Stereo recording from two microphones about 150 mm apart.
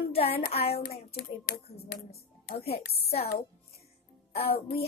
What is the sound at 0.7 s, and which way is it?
Speech, 90° left.